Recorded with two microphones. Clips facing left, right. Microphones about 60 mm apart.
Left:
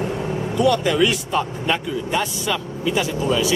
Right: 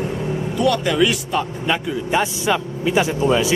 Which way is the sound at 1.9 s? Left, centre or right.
Centre.